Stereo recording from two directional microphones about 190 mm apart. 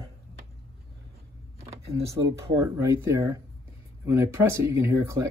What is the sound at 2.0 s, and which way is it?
Speech, 15° right (ahead or behind).